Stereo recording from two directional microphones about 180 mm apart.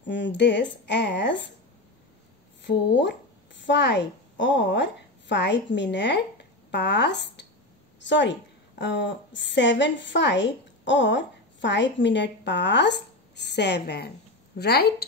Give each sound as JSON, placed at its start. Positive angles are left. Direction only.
{"t": 0.0, "sound": "speech", "side_deg": 80}
{"t": 2.6, "sound": "a woman's voice", "side_deg": 80}